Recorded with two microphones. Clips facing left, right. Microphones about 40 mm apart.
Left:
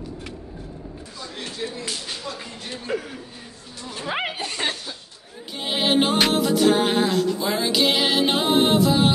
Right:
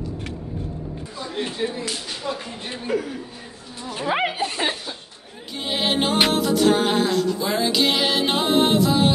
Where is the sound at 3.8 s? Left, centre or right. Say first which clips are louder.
Right 4 dB; centre.